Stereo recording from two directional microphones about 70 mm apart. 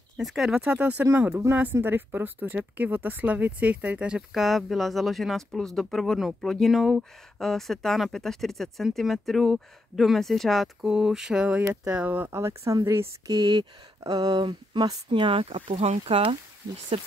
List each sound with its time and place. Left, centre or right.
0.2 s speech: centre
0.7 s speech: right
1.5 s speech: right
4.3 s speech: centre
10.9 s mantra: centre
11.4 s speech: centre
12.3 s speech: right
13.3 s speech: right